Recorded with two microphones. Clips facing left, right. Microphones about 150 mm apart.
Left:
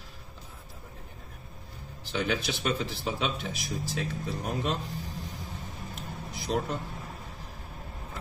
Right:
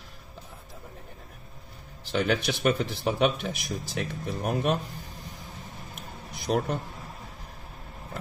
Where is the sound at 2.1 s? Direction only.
60° right (ahead or behind).